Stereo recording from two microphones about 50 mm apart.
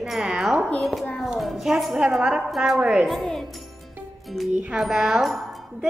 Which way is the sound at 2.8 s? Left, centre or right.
Centre.